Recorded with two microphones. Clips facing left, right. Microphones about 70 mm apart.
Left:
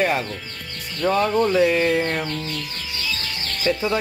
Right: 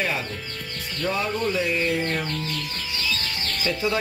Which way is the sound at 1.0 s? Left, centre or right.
Left.